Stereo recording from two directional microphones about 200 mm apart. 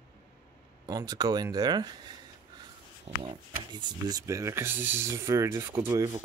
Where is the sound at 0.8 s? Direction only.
20° right (ahead or behind).